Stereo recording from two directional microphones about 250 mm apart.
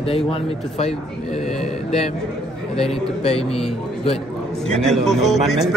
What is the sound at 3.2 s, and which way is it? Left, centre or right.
A man's voice, left.